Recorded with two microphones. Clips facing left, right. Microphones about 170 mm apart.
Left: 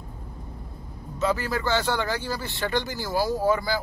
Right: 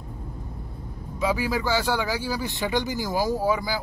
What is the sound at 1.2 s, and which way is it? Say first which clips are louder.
Speech: right 1 dB; 10° right (ahead or behind).